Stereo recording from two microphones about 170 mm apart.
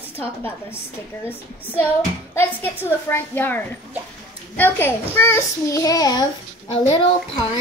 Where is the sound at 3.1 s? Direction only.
10° left (ahead or behind).